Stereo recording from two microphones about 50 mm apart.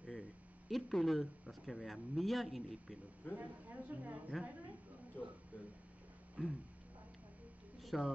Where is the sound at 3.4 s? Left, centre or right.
Right.